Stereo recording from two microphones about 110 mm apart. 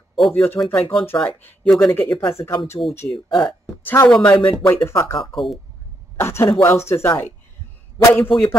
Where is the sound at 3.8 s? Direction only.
20° left (ahead or behind).